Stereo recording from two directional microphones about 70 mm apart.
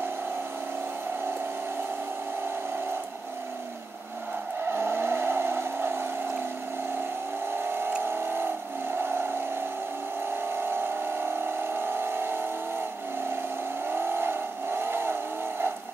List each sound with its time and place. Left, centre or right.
4.6 s vehicle: right
8.0 s vehicle: right
10.5 s vehicle: right
11.4 s a sound: right
13.8 s vehicle: right